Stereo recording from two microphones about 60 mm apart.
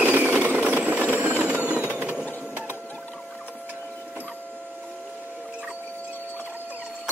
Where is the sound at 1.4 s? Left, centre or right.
Right.